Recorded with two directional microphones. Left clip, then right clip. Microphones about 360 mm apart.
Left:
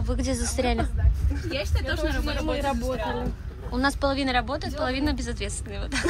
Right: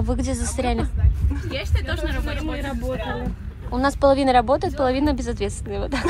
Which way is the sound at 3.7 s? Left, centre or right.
Centre.